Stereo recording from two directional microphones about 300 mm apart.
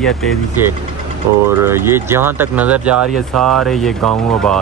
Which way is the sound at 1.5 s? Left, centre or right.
Centre.